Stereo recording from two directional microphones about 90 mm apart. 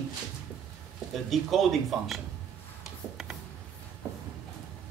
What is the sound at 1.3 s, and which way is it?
Speech, centre (ahead or behind).